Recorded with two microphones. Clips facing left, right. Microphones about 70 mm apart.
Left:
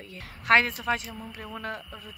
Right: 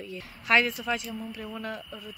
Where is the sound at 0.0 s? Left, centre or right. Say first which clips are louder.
Right 1 dB; left.